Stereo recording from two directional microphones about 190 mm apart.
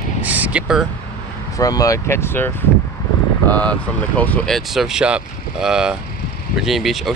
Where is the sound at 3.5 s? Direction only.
5° left (ahead or behind).